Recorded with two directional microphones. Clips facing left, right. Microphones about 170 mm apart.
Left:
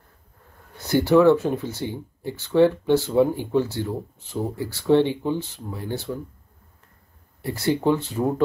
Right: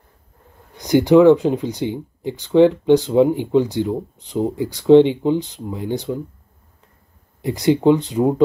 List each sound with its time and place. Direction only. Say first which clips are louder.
0.7 s speech: right 5 dB; 15° right (ahead or behind)
7.4 s speech: right 7 dB; 15° right (ahead or behind)